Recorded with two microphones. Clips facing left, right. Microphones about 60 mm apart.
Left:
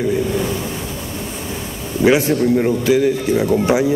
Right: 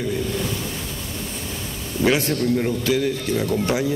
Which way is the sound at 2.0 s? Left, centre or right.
Centre.